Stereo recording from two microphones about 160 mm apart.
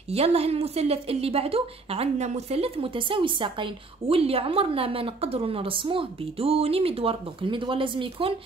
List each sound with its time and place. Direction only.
0.1 s a woman's voice: 40° right (ahead or behind)